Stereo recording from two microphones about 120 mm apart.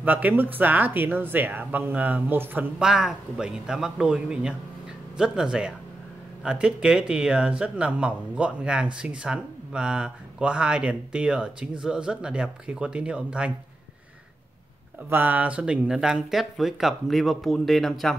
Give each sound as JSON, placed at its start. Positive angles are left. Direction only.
{"t": 0.0, "sound": "speech", "side_deg": -15}
{"t": 2.8, "sound": "speech", "side_deg": -5}
{"t": 15.0, "sound": "speech", "side_deg": -15}